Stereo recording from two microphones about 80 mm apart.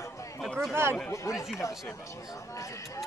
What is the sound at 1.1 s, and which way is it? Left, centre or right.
Speech, left.